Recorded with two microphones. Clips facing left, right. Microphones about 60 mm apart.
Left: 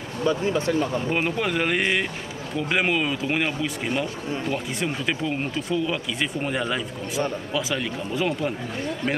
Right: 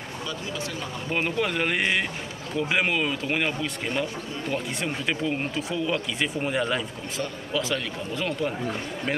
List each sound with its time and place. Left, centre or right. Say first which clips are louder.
0.2 s speech: left 11 dB; left
1.1 s speech: right 2 dB; centre